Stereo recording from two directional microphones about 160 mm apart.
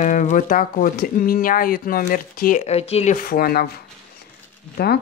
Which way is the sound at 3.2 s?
65° left (ahead or behind).